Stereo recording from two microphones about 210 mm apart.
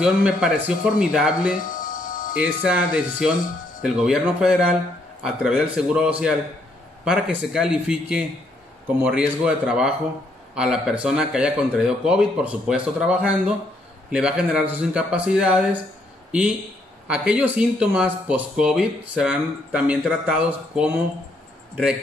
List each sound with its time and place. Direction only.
0.0 s speech: 5° right (ahead or behind)
1.8 s music: 40° left (ahead or behind)
2.3 s a man's voice: 5° right (ahead or behind)